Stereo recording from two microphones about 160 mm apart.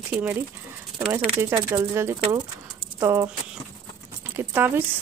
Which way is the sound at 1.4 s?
15° right (ahead or behind).